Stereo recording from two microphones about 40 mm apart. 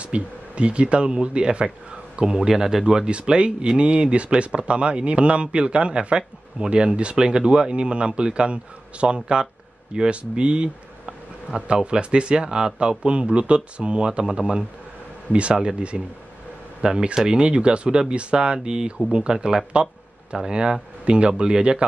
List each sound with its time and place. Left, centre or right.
0.0 s speech: right
21.0 s speech: right